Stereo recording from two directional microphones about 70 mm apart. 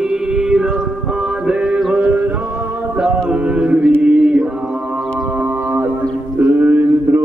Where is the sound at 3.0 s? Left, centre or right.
Centre.